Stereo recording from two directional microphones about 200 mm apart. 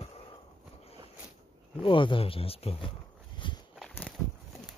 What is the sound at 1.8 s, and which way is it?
Speech, 25° left (ahead or behind).